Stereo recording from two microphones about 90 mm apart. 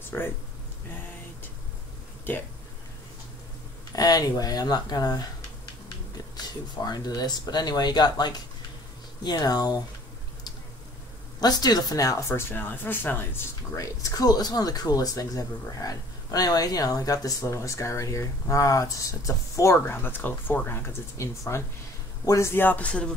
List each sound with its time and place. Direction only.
0.1 s speech: 25° left (ahead or behind)
2.3 s speech: 20° left (ahead or behind)
3.9 s speech: 45° left (ahead or behind)
6.3 s speech: 50° left (ahead or behind)
11.3 s speech: 50° left (ahead or behind); by 13.3 s 20° left (ahead or behind)
13.7 s speech: 40° left (ahead or behind)
19.8 s speech: 25° left (ahead or behind)